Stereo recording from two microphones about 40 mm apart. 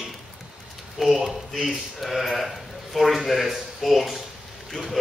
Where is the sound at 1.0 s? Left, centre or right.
Centre.